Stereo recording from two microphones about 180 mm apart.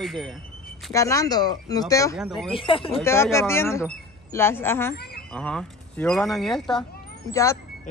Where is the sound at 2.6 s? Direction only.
30° left (ahead or behind).